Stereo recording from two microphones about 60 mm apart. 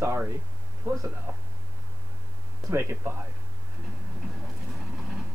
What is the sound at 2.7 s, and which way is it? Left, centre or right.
Speech, right.